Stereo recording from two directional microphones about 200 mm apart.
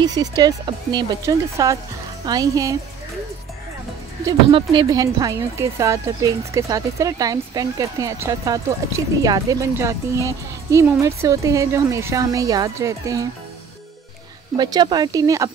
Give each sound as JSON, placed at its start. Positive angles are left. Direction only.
{"t": 0.0, "sound": "speech", "side_deg": -20}
{"t": 4.2, "sound": "speech", "side_deg": -25}
{"t": 14.6, "sound": "speech", "side_deg": -20}